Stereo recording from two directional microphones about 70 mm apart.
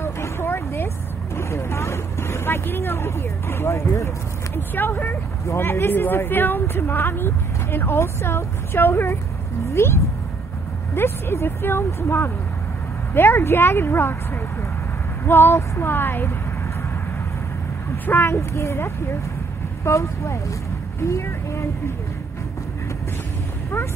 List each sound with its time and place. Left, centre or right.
0.0 s a sound: left
1.3 s vehicle: left
4.6 s speech: left
18.0 s speech: left
18.3 s speech: left